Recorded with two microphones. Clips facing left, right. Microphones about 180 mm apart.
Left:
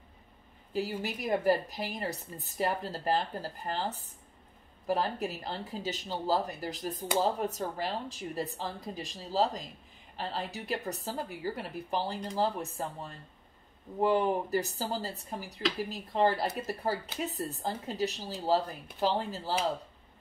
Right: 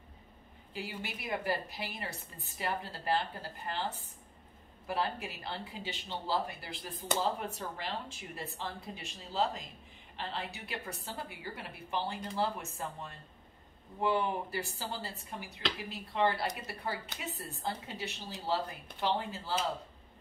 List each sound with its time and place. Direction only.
0.7 s a woman's voice: 40° left (ahead or behind)